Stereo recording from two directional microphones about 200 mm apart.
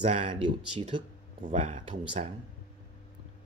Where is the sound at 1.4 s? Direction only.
35° right (ahead or behind).